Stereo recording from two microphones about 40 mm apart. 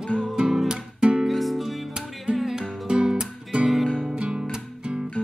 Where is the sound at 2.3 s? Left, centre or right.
Right.